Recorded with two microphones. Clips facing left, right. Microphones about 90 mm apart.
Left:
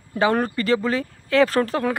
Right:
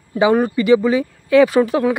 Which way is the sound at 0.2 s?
10° right (ahead or behind).